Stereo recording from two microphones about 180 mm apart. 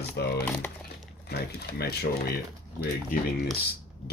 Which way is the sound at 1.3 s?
60° left (ahead or behind).